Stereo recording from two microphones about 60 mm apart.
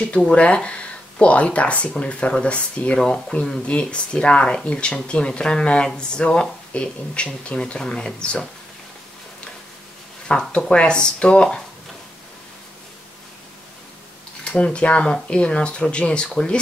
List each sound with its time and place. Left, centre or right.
0.3 s speech: left
10.2 s speech: centre
14.4 s speech: left